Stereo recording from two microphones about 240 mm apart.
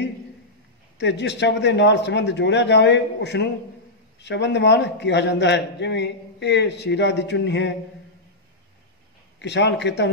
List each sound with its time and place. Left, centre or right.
0.9 s a man's voice: left
9.4 s a man's voice: left